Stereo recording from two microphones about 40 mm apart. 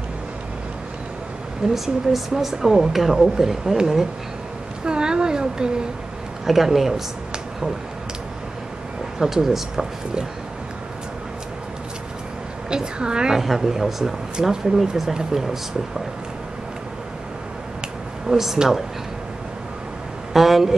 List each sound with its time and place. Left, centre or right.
1.7 s speech: centre
4.8 s a sound: centre
6.4 s speech: centre
9.2 s speech: centre
12.6 s a woman's voice: right
13.4 s speech: centre
18.3 s speech: centre
20.3 s speech: centre